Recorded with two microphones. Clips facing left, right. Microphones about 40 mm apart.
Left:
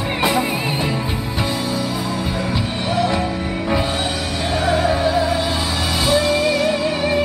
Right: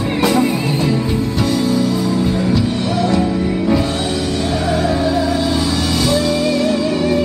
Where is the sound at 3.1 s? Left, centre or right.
Centre.